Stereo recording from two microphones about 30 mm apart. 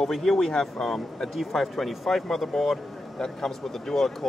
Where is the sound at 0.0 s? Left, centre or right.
Centre.